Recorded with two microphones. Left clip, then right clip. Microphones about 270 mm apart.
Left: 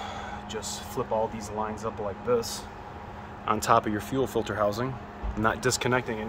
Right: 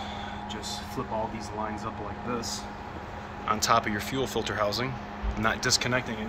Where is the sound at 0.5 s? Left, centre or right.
Left.